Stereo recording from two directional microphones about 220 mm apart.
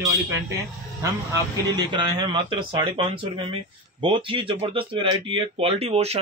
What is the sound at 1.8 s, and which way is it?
Speech, 20° right (ahead or behind).